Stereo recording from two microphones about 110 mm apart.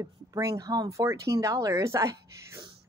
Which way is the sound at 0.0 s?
30° right (ahead or behind).